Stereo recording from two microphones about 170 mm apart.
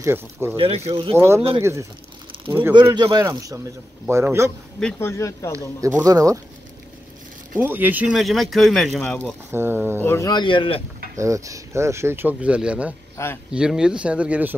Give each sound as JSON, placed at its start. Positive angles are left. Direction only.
{"t": 0.0, "sound": "speech", "side_deg": -15}
{"t": 0.6, "sound": "speech", "side_deg": -35}
{"t": 1.1, "sound": "speech", "side_deg": -15}
{"t": 4.7, "sound": "speech", "side_deg": 10}
{"t": 5.8, "sound": "speech", "side_deg": -15}
{"t": 7.5, "sound": "speech", "side_deg": -10}
{"t": 9.5, "sound": "speech", "side_deg": -15}
{"t": 10.0, "sound": "speech", "side_deg": 20}
{"t": 11.1, "sound": "speech", "side_deg": -20}